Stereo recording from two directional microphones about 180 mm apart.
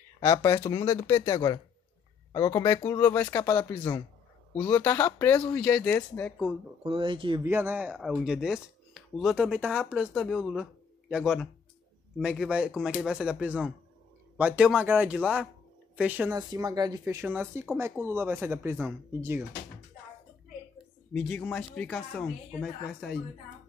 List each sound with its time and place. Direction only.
0.2 s speech: 15° left (ahead or behind)
6.8 s speech: 30° right (ahead or behind)
7.4 s speech: 10° right (ahead or behind)
16.3 s speech: 20° right (ahead or behind)
21.1 s speech: 5° left (ahead or behind)